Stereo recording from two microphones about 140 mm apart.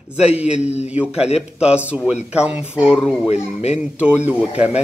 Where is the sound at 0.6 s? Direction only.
50° left (ahead or behind).